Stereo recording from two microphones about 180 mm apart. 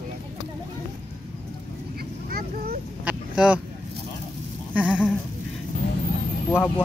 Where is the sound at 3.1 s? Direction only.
5° right (ahead or behind).